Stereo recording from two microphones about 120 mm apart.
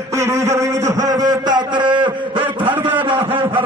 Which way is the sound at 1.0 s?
30° right (ahead or behind).